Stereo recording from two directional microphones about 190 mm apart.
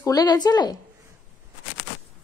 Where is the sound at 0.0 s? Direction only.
20° left (ahead or behind).